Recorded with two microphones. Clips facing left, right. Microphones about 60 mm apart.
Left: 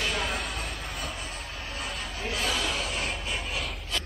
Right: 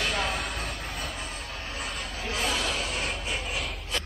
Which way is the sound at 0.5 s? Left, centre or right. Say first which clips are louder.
Right 1 dB; right.